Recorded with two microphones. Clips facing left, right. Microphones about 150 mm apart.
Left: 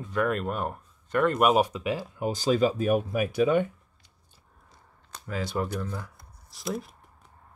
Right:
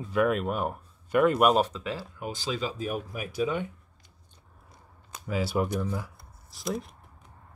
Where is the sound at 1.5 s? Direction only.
10° left (ahead or behind).